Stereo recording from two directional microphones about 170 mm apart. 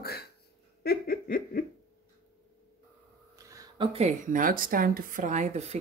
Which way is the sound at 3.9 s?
40° right (ahead or behind).